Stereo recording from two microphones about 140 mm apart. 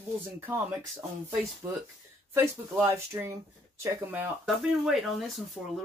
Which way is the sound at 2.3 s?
20° right (ahead or behind).